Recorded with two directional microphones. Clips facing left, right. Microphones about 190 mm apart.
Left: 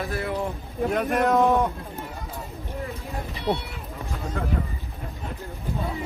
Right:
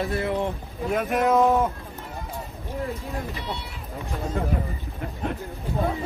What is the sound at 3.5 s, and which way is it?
Speech, 45° left (ahead or behind).